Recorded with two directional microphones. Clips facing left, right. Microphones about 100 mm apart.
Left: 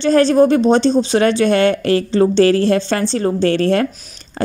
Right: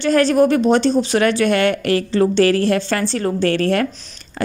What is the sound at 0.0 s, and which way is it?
Speech, 30° left (ahead or behind).